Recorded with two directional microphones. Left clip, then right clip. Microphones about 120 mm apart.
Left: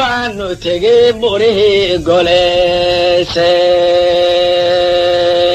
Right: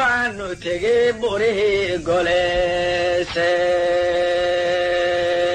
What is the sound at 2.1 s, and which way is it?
Mantra, 50° right (ahead or behind).